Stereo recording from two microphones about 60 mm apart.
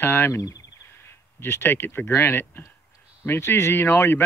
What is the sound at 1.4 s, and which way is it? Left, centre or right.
Speech, left.